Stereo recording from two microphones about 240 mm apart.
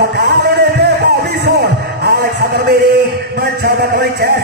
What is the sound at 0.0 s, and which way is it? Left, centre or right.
Music, right.